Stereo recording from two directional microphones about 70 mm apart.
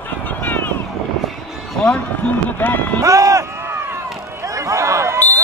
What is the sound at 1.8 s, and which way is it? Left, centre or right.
Run, centre.